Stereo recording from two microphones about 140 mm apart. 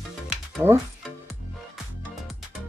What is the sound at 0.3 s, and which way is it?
Music, 15° right (ahead or behind).